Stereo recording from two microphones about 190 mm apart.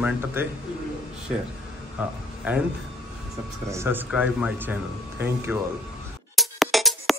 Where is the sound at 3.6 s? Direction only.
15° right (ahead or behind).